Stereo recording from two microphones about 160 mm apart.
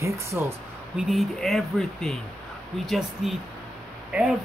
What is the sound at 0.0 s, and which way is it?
Speech, 20° right (ahead or behind).